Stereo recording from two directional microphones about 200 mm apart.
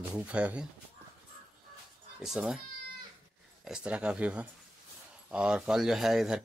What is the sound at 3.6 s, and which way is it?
Speech, 5° right (ahead or behind).